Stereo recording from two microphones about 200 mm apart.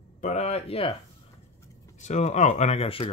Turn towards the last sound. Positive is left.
turn(degrees=25)  # may be behind; listen again after turning